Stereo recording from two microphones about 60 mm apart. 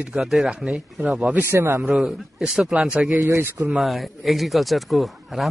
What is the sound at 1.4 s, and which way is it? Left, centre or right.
Speech, right.